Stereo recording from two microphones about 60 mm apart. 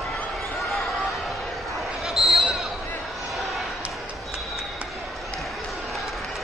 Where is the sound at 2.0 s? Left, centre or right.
Centre.